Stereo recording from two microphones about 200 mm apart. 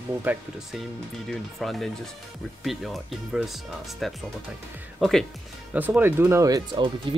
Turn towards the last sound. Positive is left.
turn(degrees=-25)  # may be behind; listen again after turning